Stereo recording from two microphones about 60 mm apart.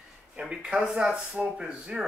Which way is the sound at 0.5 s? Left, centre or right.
Centre.